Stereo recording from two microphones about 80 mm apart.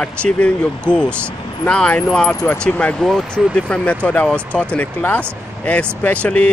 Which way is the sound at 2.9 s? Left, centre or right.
Centre.